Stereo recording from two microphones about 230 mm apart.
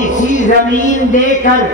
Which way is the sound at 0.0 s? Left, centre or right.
Left.